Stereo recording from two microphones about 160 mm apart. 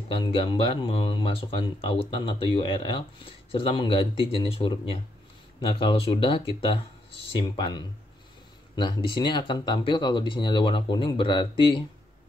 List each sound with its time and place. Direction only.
0.1 s speech: 30° left (ahead or behind)